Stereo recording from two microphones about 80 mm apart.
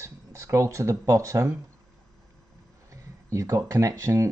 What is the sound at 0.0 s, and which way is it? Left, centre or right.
Speech, right.